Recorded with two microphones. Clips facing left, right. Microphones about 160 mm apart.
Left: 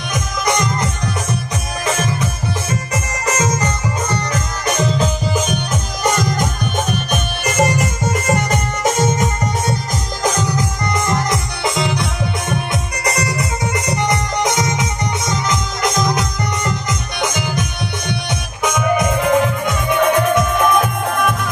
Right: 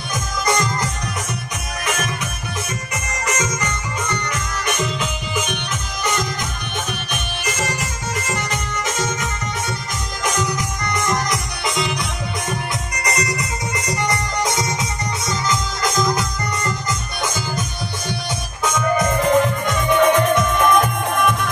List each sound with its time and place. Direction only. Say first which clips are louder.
0.1 s music: left 2 dB; 20° left (ahead or behind)
1.9 s music: left 5 dB; 30° left (ahead or behind)
3.3 s music: left 5 dB; 30° left (ahead or behind)
10.2 s music: left 3 dB; 35° left (ahead or behind); by 21.4 s 5° left (ahead or behind)